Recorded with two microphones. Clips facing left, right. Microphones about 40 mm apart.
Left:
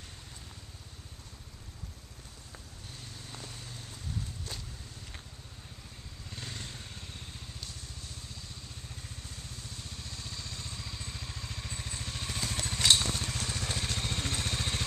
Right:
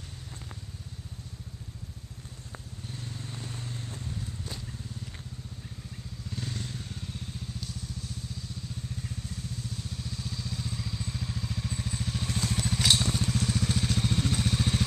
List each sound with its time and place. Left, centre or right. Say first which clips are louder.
3.3 s vehicle: right 5 dB; centre
6.3 s motorcycle: right 5 dB; centre
9.6 s vehicle: right 6 dB; centre